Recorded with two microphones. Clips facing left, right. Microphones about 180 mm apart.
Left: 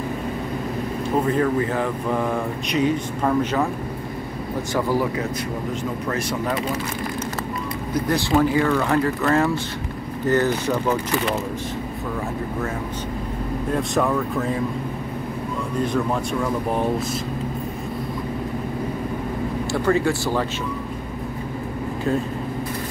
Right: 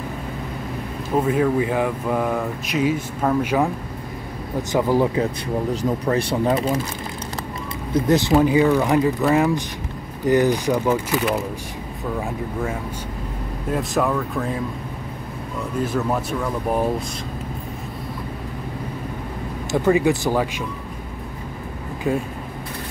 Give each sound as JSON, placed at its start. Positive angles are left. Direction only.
{"t": 1.2, "sound": "speech", "side_deg": -10}
{"t": 4.7, "sound": "speech", "side_deg": -20}
{"t": 5.7, "sound": "speech", "side_deg": -35}
{"t": 7.9, "sound": "speech", "side_deg": -20}
{"t": 13.7, "sound": "speech", "side_deg": 0}
{"t": 15.8, "sound": "speech", "side_deg": -5}
{"t": 19.7, "sound": "speech", "side_deg": -15}